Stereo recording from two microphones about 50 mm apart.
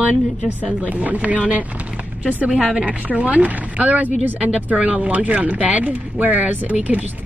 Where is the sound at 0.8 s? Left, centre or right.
Right.